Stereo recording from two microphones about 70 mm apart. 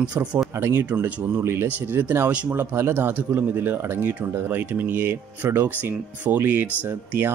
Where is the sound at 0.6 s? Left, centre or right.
Right.